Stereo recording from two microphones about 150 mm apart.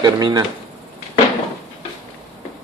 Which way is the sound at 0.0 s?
25° right (ahead or behind).